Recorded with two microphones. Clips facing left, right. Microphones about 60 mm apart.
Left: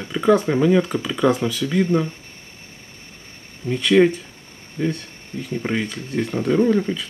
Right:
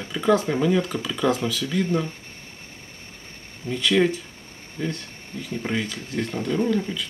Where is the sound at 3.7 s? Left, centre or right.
Centre.